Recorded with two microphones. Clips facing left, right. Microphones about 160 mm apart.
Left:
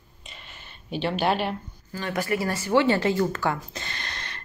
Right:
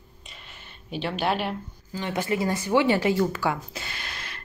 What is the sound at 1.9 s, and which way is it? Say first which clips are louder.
Speech: even; 20° right (ahead or behind).